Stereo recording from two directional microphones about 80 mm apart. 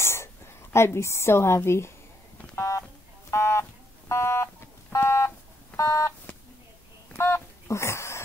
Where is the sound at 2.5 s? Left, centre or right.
Left.